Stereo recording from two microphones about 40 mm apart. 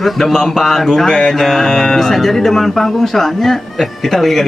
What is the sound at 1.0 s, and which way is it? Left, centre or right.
Speech, centre.